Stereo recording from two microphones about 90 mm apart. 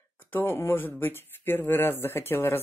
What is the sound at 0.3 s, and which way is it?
Speech, 25° left (ahead or behind).